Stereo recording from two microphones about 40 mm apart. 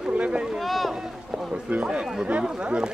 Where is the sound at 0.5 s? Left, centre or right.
Centre.